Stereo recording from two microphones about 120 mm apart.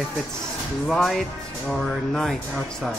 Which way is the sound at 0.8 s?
Centre (ahead or behind).